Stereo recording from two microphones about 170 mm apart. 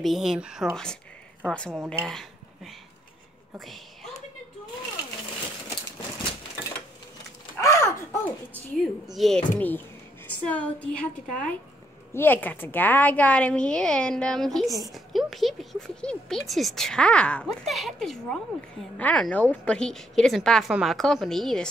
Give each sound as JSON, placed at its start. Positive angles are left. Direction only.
{"t": 0.0, "sound": "speech", "side_deg": 0}
{"t": 1.9, "sound": "speech", "side_deg": 0}
{"t": 7.6, "sound": "a sound", "side_deg": 20}
{"t": 8.7, "sound": "a woman's voice", "side_deg": 0}